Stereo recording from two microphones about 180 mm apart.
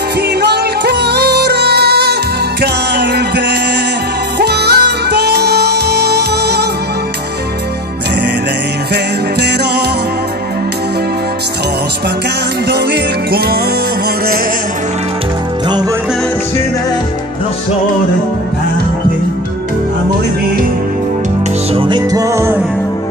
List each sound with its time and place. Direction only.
0.4 s music: 65° right (ahead or behind)
8.9 s music: 65° right (ahead or behind)
12.6 s music: 65° right (ahead or behind)
21.7 s music: 25° right (ahead or behind)